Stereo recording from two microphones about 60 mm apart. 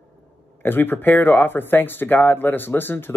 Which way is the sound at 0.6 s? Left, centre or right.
Left.